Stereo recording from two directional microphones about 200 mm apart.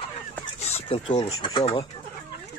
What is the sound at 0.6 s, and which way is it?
Speech, 30° left (ahead or behind).